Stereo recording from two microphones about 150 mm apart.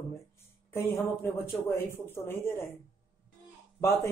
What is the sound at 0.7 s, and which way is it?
Speech, 15° left (ahead or behind).